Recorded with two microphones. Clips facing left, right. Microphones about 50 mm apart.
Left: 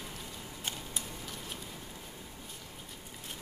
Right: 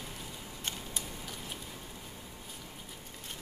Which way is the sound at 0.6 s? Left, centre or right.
Centre.